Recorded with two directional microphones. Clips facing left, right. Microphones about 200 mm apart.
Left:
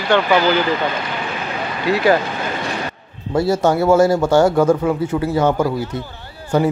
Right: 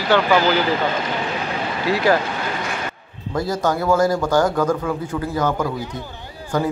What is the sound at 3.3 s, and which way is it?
A man's voice, 25° left (ahead or behind).